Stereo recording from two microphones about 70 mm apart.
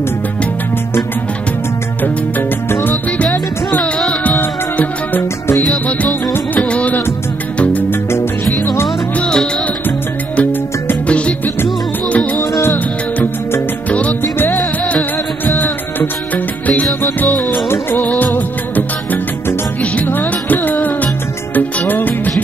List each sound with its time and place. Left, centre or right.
2.3 s music: left
3.8 s music: centre
4.4 s music: left
7.9 s music: left
9.1 s music: centre
9.8 s music: left
12.7 s music: left
17.2 s music: left
17.6 s music of bollywood: left
19.8 s music: left